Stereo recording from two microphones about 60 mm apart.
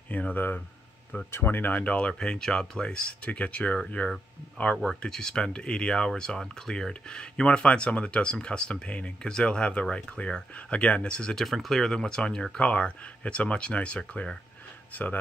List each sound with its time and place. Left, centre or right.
0.1 s speech: left
11.4 s speech: centre
14.9 s speech: left